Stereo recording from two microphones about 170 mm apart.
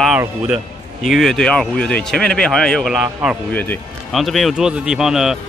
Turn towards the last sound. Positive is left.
turn(degrees=0)  # may be behind; listen again after turning